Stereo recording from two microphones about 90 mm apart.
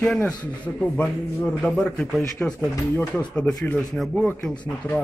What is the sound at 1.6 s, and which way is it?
A man's voice, 10° left (ahead or behind).